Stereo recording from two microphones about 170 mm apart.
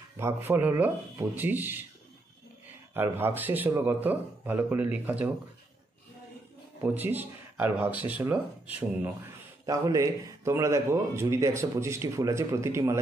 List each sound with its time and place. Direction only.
0.2 s speech: 10° right (ahead or behind)
2.9 s speech: 15° right (ahead or behind)
6.8 s speech: 10° right (ahead or behind)